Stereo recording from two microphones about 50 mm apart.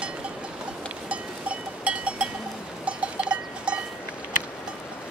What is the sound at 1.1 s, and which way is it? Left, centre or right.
Cowbell, right.